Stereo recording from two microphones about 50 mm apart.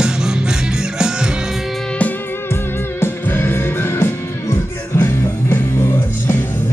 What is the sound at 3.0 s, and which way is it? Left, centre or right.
Music, left.